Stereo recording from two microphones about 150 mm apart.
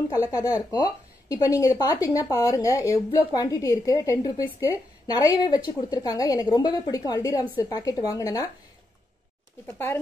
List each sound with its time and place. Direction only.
0.3 s speech: 25° left (ahead or behind)
9.7 s speech: 20° left (ahead or behind)